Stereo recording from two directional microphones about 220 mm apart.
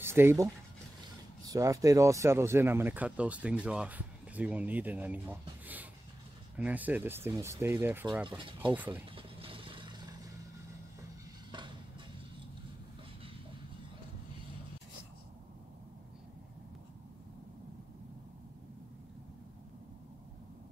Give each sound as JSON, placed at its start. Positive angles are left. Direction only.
{"t": 0.0, "sound": "speech", "side_deg": -10}
{"t": 9.1, "sound": "vehicle", "side_deg": -25}